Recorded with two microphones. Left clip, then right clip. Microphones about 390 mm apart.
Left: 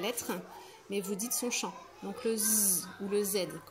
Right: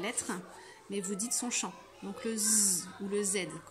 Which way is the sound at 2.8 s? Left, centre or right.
Centre.